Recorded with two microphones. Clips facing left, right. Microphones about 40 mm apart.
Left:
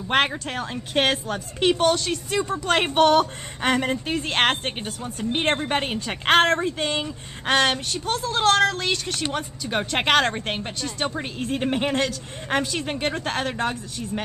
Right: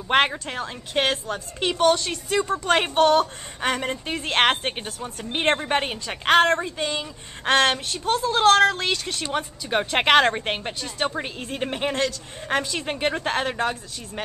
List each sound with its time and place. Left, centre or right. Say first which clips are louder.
0.1 s speech: right 1 dB; centre
2.9 s a woman's voice: left 2 dB; centre
3.6 s speech: left 3 dB; centre
6.0 s a woman's voice: even; centre
7.4 s speech: right 1 dB; centre